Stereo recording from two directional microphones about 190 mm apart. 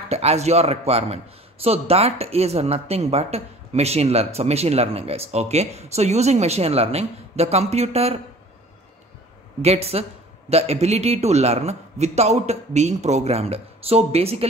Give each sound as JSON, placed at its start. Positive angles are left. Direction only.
{"t": 0.1, "sound": "a man's voice", "side_deg": -35}
{"t": 9.6, "sound": "a man's voice", "side_deg": -35}